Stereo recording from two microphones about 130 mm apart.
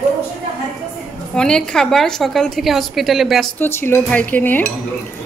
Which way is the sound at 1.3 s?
5° left (ahead or behind).